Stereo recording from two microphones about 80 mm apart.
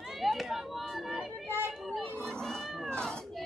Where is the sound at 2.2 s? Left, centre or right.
Centre.